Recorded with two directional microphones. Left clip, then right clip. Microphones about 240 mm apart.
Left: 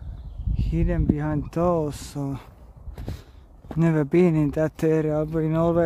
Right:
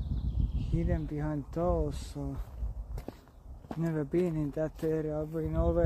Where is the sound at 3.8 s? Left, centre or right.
Left.